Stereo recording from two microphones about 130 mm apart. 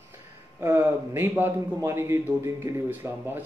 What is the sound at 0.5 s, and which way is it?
A man's voice, 15° right (ahead or behind).